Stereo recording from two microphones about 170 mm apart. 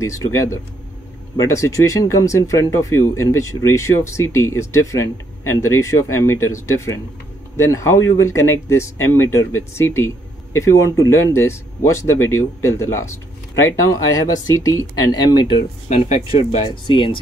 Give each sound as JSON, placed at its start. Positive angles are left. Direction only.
{"t": 0.0, "sound": "speech", "side_deg": 20}